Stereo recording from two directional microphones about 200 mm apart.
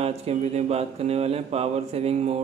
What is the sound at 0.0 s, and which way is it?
A man's voice, 30° right (ahead or behind).